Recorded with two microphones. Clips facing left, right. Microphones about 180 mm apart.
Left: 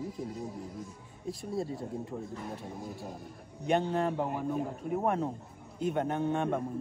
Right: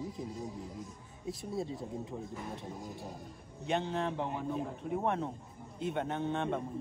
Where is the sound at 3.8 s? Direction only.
45° left (ahead or behind).